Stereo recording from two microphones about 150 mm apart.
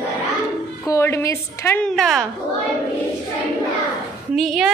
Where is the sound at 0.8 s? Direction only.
20° left (ahead or behind).